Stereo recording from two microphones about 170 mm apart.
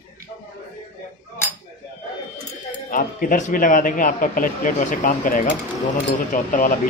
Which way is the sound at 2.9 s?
50° left (ahead or behind).